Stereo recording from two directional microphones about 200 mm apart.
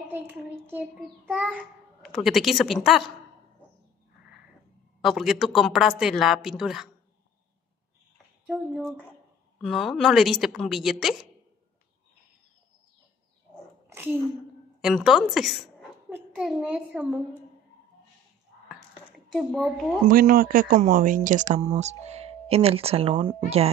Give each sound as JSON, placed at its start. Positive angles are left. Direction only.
{"t": 0.1, "sound": "a child's voice", "side_deg": -10}
{"t": 5.0, "sound": "a woman's voice", "side_deg": 0}
{"t": 9.6, "sound": "a woman's voice", "side_deg": 0}
{"t": 13.8, "sound": "a sound", "side_deg": -10}
{"t": 14.8, "sound": "a woman's voice", "side_deg": -5}
{"t": 19.3, "sound": "a woman's voice", "side_deg": 0}
{"t": 20.1, "sound": "speech", "side_deg": -45}